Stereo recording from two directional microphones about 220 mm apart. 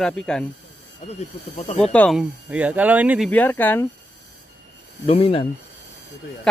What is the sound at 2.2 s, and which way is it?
Speech, 5° right (ahead or behind).